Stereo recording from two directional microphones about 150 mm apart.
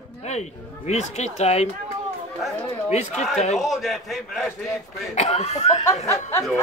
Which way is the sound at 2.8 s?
50° left (ahead or behind).